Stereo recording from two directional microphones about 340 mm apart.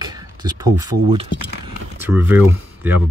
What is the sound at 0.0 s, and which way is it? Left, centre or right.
Speech, centre.